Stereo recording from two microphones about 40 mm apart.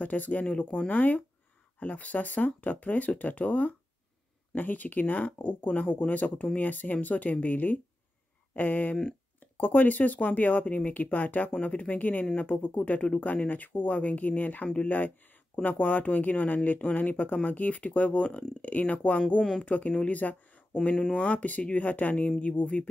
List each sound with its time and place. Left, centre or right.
0.0 s speech: left
10.6 s speech: left
10.9 s speech: left
11.6 s speech: left